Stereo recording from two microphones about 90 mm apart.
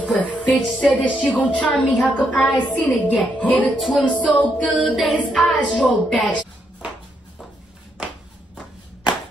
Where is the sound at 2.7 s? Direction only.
15° left (ahead or behind).